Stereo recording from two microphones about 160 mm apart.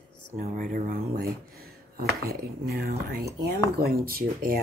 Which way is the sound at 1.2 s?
70° right (ahead or behind).